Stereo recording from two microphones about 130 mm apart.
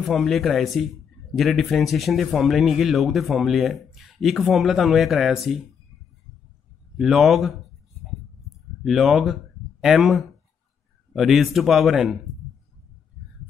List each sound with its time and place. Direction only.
0.0 s speech: centre (ahead or behind)
7.0 s speech: centre (ahead or behind)
8.0 s a sound: centre (ahead or behind)
11.1 s speech: centre (ahead or behind)